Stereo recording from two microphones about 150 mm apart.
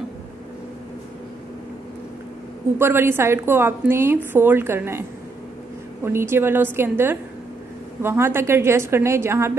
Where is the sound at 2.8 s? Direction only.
15° right (ahead or behind).